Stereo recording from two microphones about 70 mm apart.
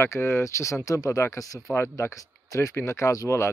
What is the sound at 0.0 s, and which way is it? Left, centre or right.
Speech, left.